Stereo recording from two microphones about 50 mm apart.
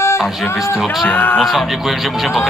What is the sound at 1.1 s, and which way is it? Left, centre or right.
Speech, left.